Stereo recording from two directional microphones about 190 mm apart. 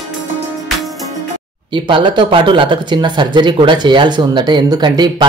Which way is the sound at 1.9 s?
25° right (ahead or behind).